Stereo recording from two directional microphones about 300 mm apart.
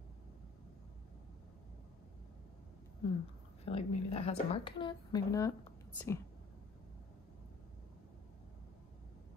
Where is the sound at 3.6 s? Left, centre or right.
Centre.